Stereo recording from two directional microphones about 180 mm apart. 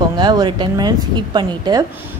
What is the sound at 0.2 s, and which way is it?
A woman's voice, 25° right (ahead or behind).